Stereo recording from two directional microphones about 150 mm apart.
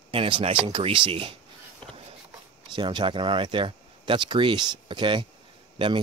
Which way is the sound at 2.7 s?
30° right (ahead or behind).